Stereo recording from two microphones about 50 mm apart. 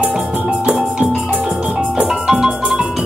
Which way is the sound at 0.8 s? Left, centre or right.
Centre.